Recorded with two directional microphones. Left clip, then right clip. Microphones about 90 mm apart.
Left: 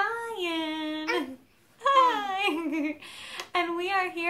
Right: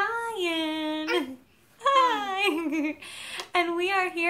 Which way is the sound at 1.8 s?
25° right (ahead or behind).